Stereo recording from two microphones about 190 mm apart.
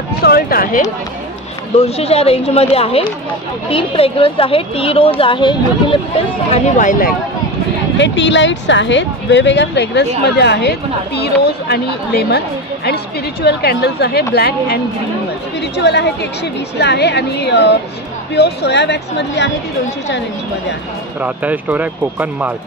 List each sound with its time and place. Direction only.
0.2 s speech: 55° left (ahead or behind)
1.8 s a woman's voice: 35° left (ahead or behind)
6.5 s speech: 40° left (ahead or behind)
8.0 s a woman's voice: 70° left (ahead or behind)
21.2 s speech: 10° right (ahead or behind)